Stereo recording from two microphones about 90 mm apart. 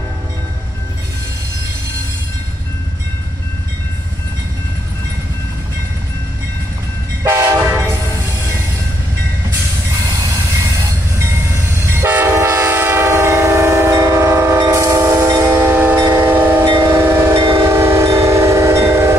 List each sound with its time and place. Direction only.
7.2 s train horn: 30° right (ahead or behind)
9.5 s train: 40° right (ahead or behind)
15.4 s train: 20° right (ahead or behind)
16.0 s train: 30° right (ahead or behind)